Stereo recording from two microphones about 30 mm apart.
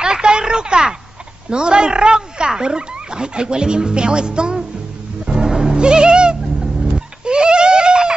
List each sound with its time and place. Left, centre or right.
0.0 s a sound: right
1.5 s speech: right
5.2 s cat: right